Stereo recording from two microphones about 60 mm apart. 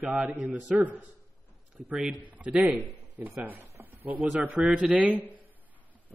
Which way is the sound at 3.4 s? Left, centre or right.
Right.